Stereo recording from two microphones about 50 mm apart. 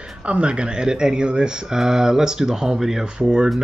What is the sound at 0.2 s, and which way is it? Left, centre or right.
Speech, right.